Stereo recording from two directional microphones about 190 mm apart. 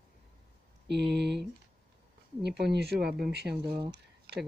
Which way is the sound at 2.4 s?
60° right (ahead or behind).